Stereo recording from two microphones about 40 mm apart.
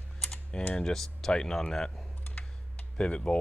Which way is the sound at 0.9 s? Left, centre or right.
Centre.